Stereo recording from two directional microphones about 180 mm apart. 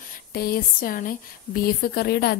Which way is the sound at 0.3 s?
55° left (ahead or behind).